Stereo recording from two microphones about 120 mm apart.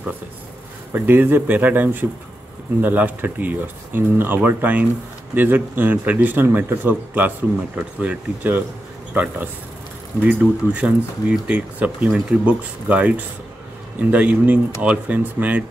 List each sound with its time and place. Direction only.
0.9 s speech: 15° right (ahead or behind)